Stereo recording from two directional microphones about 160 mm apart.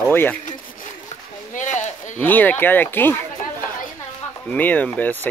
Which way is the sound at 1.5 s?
50° left (ahead or behind).